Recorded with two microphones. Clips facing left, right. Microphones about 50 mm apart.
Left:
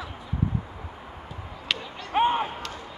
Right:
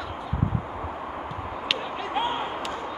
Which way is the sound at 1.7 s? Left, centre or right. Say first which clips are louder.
Right 4 dB; centre.